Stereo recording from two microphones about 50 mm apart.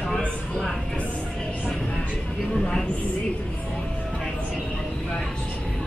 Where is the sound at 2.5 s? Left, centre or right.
Centre.